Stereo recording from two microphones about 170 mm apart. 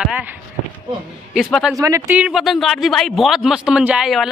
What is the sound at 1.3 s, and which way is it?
Speech, centre (ahead or behind).